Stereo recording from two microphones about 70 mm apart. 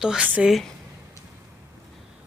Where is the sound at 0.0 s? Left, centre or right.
Centre.